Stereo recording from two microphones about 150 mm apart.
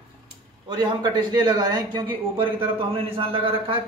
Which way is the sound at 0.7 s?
30° right (ahead or behind).